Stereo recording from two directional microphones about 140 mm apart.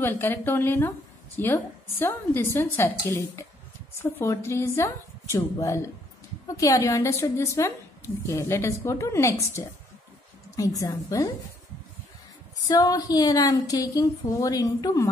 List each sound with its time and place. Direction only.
0.0 s a woman's voice: 15° left (ahead or behind)
12.6 s a woman's voice: 25° left (ahead or behind)